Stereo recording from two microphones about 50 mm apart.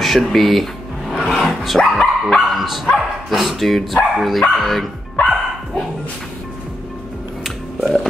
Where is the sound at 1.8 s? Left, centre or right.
Left.